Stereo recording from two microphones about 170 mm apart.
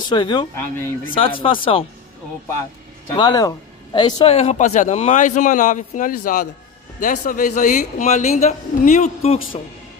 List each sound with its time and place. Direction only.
0.1 s speech: 25° left (ahead or behind)
3.2 s speech: 25° left (ahead or behind)
4.2 s a man's voice: 40° left (ahead or behind)